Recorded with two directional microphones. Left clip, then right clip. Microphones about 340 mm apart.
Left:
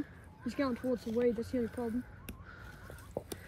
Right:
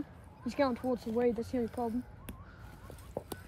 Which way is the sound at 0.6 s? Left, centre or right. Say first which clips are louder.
Right 3 dB; right.